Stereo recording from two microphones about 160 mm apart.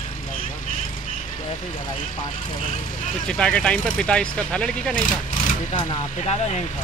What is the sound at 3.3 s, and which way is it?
Speech, 5° left (ahead or behind).